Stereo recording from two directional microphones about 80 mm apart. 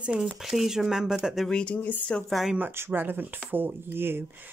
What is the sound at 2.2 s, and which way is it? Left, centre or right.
Speech, centre.